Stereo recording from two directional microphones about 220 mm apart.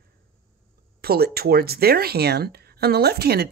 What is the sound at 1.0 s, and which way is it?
Speech, 45° right (ahead or behind).